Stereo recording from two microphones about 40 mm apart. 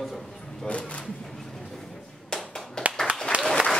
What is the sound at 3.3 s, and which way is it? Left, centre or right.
Applause, right.